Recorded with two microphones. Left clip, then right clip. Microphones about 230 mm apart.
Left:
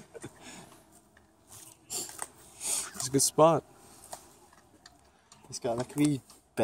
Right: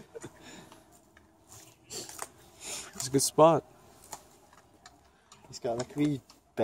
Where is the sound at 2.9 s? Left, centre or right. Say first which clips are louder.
Right 1 dB; centre.